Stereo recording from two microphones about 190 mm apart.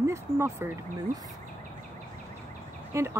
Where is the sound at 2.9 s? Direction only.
15° right (ahead or behind).